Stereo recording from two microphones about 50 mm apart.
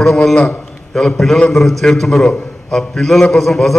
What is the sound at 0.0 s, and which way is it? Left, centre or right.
Speech, centre.